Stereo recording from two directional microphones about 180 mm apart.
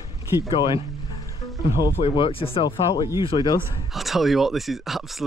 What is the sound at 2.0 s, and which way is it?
Speech, 30° left (ahead or behind).